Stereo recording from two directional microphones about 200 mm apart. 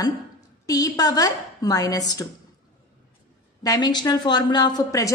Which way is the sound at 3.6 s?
20° left (ahead or behind).